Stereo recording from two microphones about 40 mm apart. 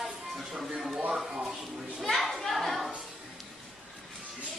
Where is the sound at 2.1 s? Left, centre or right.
Centre.